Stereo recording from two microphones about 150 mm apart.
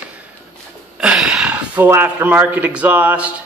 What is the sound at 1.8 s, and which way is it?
A man's voice, 15° right (ahead or behind).